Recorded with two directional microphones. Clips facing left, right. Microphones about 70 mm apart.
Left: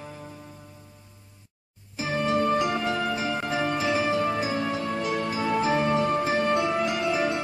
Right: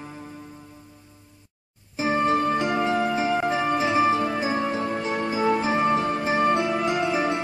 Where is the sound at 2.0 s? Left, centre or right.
Right.